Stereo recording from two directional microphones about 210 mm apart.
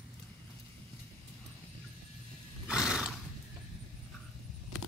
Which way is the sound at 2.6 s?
5° right (ahead or behind).